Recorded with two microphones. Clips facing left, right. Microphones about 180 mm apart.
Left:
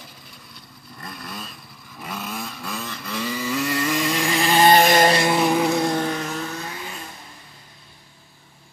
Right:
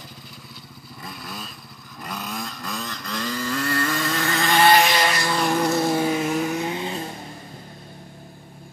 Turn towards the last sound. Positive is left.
turn(degrees=-30)  # may be behind; listen again after turning